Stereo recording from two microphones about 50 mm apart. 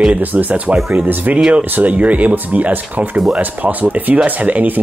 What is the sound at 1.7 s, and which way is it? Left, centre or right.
Speech, right.